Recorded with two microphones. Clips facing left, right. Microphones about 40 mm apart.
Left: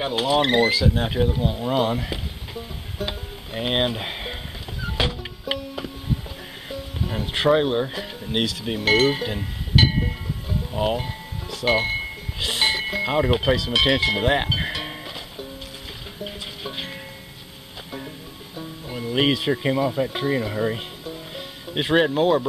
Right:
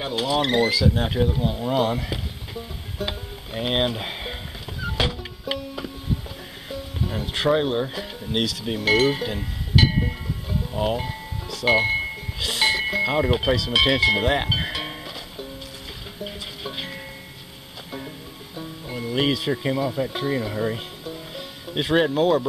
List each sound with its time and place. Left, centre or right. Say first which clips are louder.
0.0 s speech: left 2 dB; left
1.0 s speech: even; centre
4.8 s music: even; centre
7.4 s speech: left 2 dB; centre
12.4 s speech: even; centre
14.6 s music: even; centre
18.6 s music: even; centre
19.1 s speech: left 2 dB; centre